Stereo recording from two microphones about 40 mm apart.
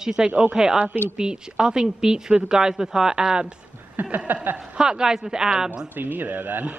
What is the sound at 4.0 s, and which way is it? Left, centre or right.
Speech, right.